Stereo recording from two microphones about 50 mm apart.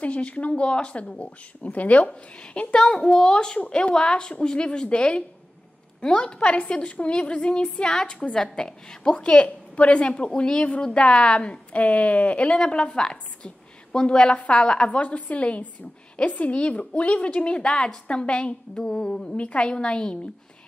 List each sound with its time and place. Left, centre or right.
0.0 s a woman's voice: left